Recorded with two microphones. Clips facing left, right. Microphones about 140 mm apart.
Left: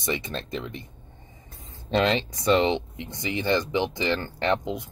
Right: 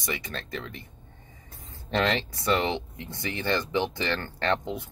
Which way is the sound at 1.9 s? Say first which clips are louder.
Left 3 dB; 20° left (ahead or behind).